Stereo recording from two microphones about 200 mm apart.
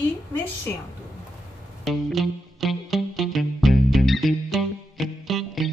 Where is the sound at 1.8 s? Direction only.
Centre (ahead or behind).